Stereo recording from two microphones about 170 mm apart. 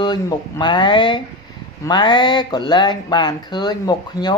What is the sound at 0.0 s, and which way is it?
Speech, 25° left (ahead or behind).